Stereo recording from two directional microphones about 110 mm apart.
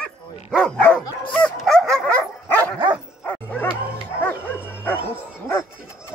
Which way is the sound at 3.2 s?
15° left (ahead or behind).